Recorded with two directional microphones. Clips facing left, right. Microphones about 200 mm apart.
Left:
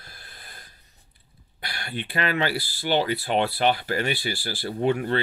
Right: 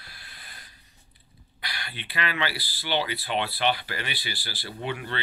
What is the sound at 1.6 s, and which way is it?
Speech, 50° left (ahead or behind).